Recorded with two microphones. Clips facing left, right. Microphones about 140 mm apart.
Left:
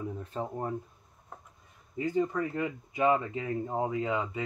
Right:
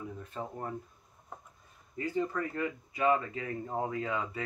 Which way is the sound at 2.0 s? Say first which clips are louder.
Left 4 dB; 15° left (ahead or behind).